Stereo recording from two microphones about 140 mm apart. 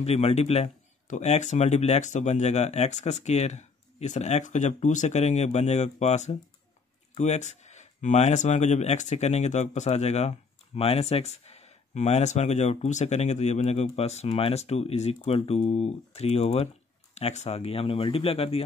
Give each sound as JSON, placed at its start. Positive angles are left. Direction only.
{"t": 0.0, "sound": "speech", "side_deg": 50}